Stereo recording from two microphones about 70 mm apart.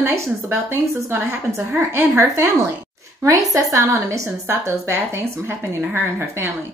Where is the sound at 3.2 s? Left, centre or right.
Right.